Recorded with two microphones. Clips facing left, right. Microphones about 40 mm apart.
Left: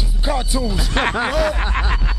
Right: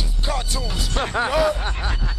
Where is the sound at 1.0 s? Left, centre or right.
Left.